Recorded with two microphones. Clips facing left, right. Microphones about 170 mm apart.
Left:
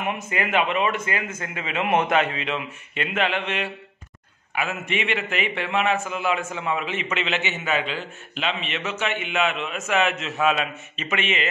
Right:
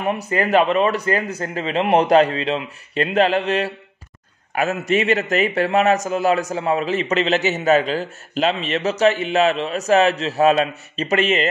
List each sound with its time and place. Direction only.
0.0 s a man's voice: 35° right (ahead or behind)